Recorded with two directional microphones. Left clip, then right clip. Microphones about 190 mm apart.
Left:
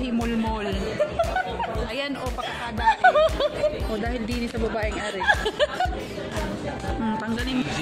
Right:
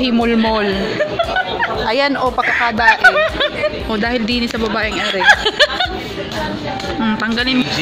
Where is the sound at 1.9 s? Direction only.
20° right (ahead or behind).